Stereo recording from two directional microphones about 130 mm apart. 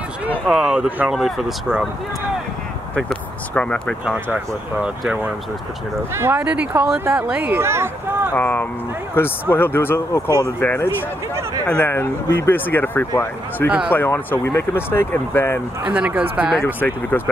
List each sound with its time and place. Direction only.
0.3 s speech: 5° right (ahead or behind)
3.0 s speech: 10° left (ahead or behind)
4.0 s speech: 5° right (ahead or behind)
7.6 s speech: 20° right (ahead or behind)
8.4 s speech: 15° left (ahead or behind)
15.8 s speech: 10° right (ahead or behind)
16.6 s speech: 15° left (ahead or behind)